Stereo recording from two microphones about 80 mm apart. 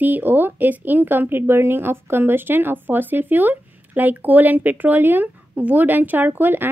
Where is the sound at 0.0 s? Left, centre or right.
Right.